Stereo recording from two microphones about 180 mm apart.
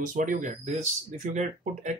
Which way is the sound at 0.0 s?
50° right (ahead or behind).